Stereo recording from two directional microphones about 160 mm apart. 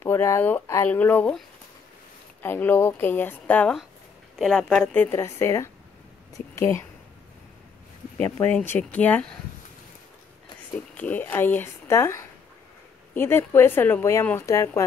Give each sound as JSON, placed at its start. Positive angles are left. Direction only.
{"t": 0.0, "sound": "a woman's voice", "side_deg": 15}
{"t": 2.4, "sound": "a woman's voice", "side_deg": 10}
{"t": 8.2, "sound": "a woman's voice", "side_deg": 10}
{"t": 11.0, "sound": "a woman's voice", "side_deg": 10}